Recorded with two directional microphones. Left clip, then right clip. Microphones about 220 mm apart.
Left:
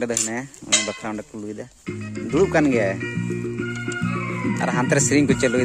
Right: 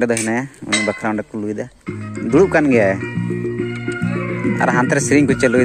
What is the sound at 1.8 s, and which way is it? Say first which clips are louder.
Music: right 3 dB; 90° left.